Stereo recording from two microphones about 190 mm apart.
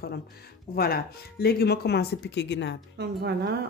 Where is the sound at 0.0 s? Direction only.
55° left (ahead or behind).